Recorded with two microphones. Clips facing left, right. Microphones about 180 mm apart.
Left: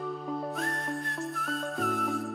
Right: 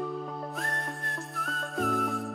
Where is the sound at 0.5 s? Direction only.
Centre (ahead or behind).